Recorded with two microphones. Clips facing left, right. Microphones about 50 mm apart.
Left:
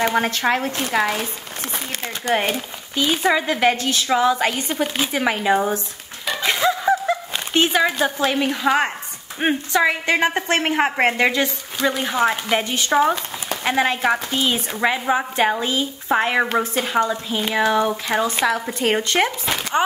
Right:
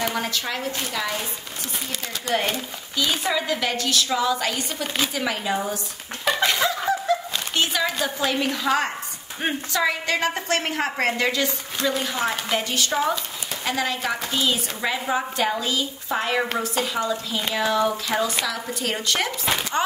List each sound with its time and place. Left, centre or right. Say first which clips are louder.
0.0 s speech: left 7 dB; left
2.4 s speech: left 3 dB; centre
3.2 s a woman's voice: left 6 dB; left
6.4 s a sound: left 5 dB; centre
8.3 s a woman's voice: left 3 dB; left